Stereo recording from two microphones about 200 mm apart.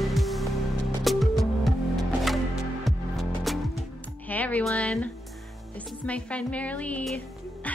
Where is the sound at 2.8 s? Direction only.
Centre (ahead or behind).